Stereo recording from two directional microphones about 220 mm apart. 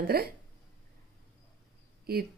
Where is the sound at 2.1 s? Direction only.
45° right (ahead or behind).